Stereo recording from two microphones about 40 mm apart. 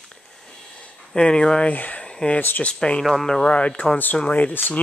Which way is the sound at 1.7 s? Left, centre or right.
Left.